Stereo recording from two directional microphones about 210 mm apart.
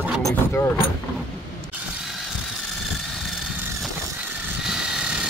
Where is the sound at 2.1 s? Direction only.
Centre (ahead or behind).